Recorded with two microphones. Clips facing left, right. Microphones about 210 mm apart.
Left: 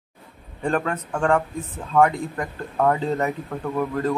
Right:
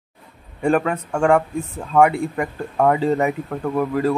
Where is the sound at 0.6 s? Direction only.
10° right (ahead or behind).